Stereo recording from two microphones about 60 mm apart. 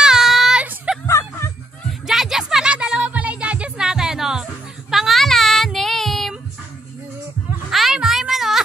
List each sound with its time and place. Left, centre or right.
0.0 s a sound: centre
1.0 s music: left
2.0 s music: centre; by 3.8 s right
3.8 s music: centre
4.9 s child singing: centre
7.7 s a sound: centre